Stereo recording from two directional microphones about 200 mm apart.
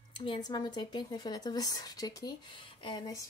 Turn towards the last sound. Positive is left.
turn(degrees=20)  # may be behind; listen again after turning